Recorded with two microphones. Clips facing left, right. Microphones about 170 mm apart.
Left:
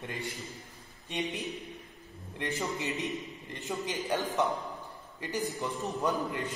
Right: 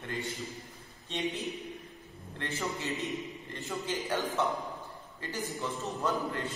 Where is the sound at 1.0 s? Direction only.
15° left (ahead or behind).